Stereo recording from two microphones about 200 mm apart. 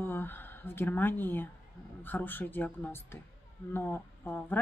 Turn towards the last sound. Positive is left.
turn(degrees=10)  # may be behind; listen again after turning